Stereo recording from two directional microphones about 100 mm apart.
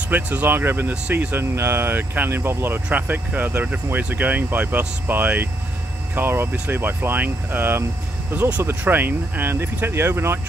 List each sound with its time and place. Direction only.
0.1 s speech: 15° right (ahead or behind)